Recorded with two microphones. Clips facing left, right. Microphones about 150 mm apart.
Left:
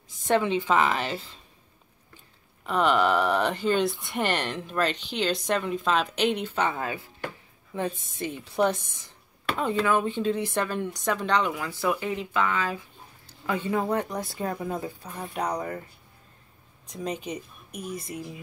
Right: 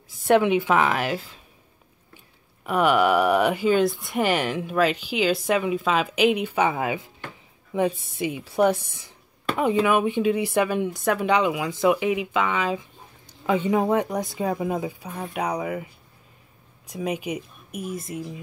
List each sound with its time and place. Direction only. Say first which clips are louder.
0.3 s speech: right 5 dB; 10° right (ahead or behind)
2.6 s speech: right 3 dB; 10° right (ahead or behind)